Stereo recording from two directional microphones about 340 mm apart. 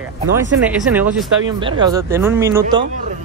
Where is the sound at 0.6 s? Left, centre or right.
Centre.